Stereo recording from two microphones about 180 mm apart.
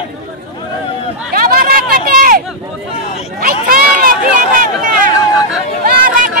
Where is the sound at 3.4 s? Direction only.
55° right (ahead or behind).